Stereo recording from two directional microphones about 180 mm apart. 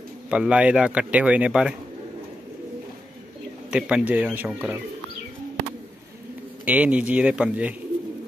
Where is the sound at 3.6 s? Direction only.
5° right (ahead or behind).